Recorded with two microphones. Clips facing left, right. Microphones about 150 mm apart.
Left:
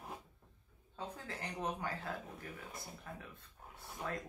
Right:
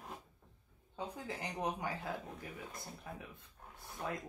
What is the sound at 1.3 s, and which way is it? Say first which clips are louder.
Speech: right 2 dB; 15° right (ahead or behind).